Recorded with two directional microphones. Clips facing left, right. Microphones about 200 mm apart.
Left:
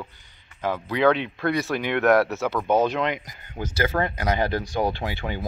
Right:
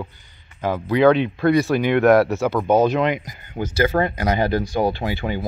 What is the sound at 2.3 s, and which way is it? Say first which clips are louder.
Speech: right 4 dB; 30° right (ahead or behind).